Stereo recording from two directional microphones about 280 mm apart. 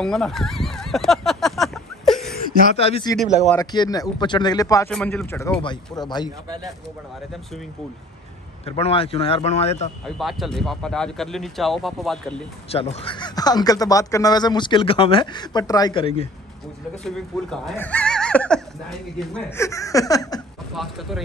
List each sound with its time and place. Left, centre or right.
0.0 s a sound: centre
2.3 s speech: left
3.3 s speech: right
3.5 s speech: centre
8.6 s speech: left
10.0 s speech: centre
12.7 s speech: centre
17.0 s speech: centre
20.7 s speech: centre